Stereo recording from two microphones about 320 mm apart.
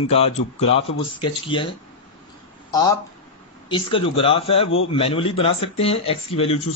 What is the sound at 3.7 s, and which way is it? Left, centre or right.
Speech, centre.